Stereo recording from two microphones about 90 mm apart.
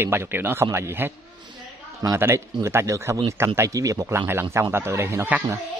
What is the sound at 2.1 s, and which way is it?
Speech, 30° right (ahead or behind).